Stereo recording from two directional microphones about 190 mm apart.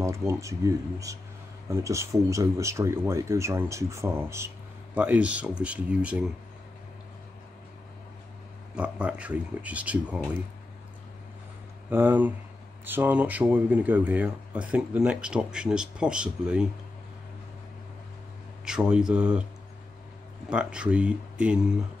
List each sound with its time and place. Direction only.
0.0 s speech: 15° right (ahead or behind)
8.7 s speech: 5° right (ahead or behind)
11.9 s speech: 10° right (ahead or behind)
18.7 s speech: 5° right (ahead or behind)
20.4 s speech: 5° right (ahead or behind)